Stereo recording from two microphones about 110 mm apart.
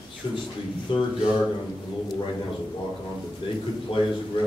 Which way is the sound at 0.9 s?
55° left (ahead or behind).